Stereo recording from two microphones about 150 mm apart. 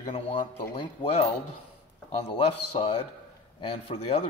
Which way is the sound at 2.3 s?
35° left (ahead or behind).